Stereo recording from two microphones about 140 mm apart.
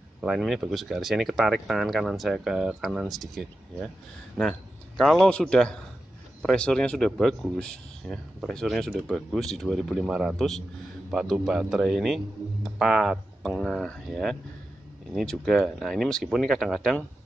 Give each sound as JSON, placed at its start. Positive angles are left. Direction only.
{"t": 0.2, "sound": "a man's voice", "side_deg": 0}